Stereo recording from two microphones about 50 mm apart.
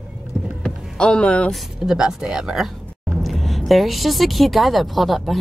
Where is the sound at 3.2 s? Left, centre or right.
Centre.